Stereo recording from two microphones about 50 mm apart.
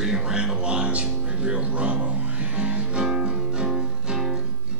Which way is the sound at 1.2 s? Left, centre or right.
Right.